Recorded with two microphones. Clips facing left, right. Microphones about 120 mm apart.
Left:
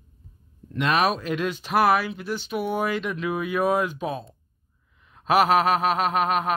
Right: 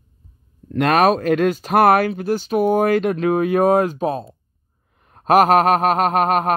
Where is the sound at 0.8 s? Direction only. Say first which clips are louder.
Right 7 dB; 45° right (ahead or behind).